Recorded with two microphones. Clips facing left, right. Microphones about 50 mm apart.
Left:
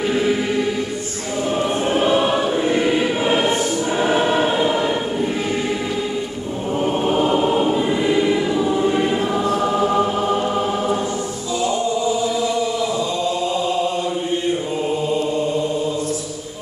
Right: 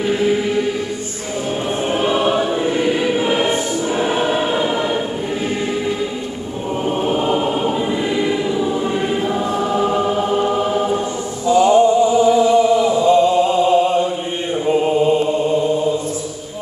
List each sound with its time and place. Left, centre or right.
11.4 s chant: right
14.7 s mantra: right